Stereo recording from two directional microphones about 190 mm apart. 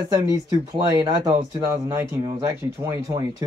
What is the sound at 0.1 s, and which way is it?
Speech, 20° right (ahead or behind).